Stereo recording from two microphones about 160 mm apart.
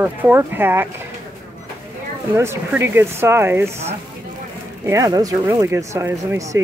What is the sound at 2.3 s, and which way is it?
Speech, 15° right (ahead or behind).